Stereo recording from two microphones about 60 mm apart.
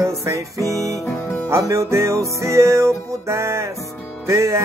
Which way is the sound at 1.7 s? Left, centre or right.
Right.